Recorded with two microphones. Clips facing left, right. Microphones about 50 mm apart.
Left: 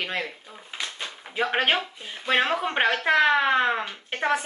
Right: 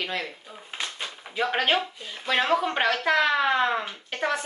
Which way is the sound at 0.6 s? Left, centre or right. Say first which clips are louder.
Even; centre.